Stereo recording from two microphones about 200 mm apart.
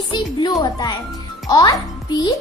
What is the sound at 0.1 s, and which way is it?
A woman's voice, 20° left (ahead or behind).